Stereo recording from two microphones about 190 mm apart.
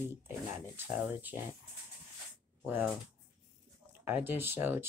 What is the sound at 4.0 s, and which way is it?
Speech, 10° right (ahead or behind).